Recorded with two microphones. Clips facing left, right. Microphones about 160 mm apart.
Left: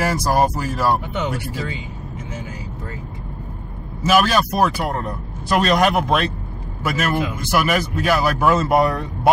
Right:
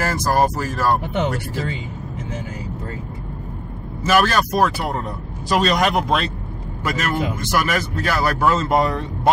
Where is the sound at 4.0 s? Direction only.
10° left (ahead or behind).